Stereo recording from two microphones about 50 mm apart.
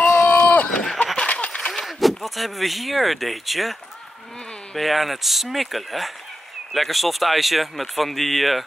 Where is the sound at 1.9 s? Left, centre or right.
Centre.